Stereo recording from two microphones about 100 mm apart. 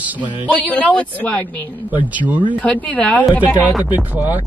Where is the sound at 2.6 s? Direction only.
15° left (ahead or behind).